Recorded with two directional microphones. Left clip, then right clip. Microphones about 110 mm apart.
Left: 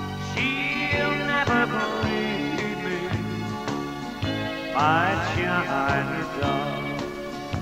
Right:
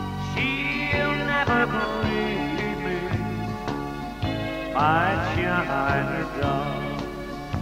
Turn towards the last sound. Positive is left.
turn(degrees=15)  # may be behind; listen again after turning